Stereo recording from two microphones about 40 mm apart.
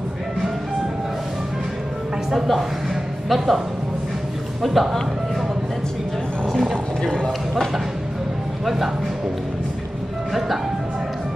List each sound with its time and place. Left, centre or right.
2.3 s a man's voice: centre
7.0 s a sound: centre
8.6 s speech: centre